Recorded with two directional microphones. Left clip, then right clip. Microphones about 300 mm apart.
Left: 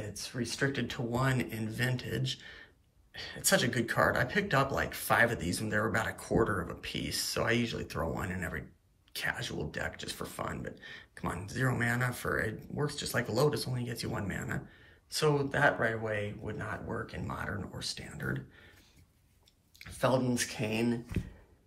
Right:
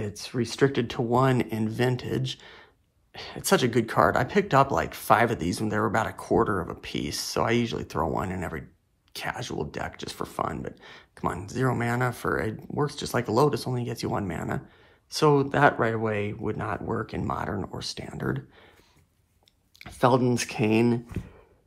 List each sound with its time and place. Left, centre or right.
0.1 s speech: right
19.8 s speech: centre